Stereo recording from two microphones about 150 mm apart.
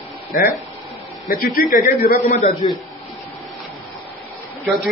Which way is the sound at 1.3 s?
75° left (ahead or behind).